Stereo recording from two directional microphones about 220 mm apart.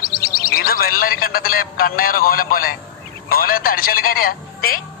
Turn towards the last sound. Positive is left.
turn(degrees=40)  # may be behind; listen again after turning